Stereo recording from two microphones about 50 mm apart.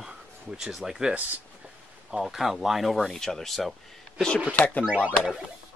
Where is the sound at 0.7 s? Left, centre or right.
Centre.